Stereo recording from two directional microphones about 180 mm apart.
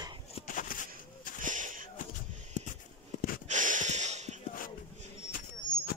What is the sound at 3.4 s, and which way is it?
Snort, 45° right (ahead or behind).